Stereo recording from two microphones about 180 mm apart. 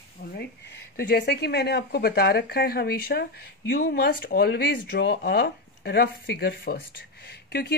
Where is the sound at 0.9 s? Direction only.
60° left (ahead or behind).